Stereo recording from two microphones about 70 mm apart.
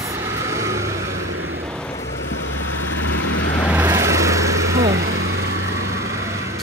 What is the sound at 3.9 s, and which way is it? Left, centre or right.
Vehicle, right.